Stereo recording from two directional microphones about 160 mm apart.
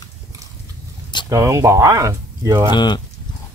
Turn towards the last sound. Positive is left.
turn(degrees=30)  # may be behind; listen again after turning